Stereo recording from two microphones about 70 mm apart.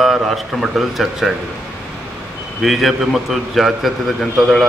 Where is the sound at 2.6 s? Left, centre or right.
Centre.